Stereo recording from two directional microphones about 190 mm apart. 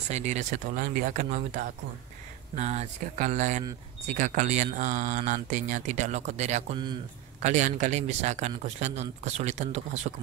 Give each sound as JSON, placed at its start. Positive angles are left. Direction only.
{"t": 0.1, "sound": "speech", "side_deg": -40}